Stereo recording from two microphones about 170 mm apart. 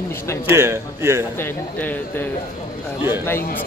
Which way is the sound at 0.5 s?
15° right (ahead or behind).